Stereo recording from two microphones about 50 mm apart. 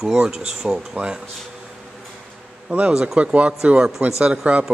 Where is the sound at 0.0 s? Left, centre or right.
Centre.